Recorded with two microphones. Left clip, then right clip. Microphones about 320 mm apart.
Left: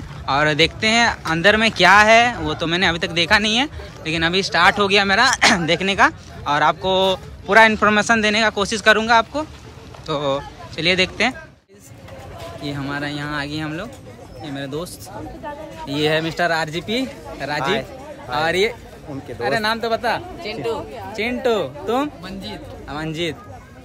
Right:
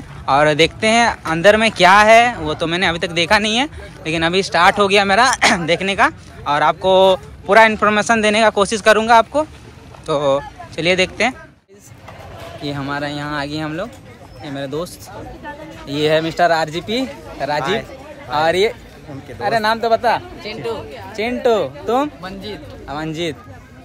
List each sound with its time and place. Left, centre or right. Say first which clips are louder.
0.2 s speech: right 4 dB; centre
12.6 s speech: right 3 dB; centre
15.9 s speech: right 4 dB; centre